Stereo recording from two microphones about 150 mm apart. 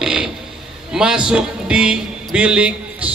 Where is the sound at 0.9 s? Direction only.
5° right (ahead or behind).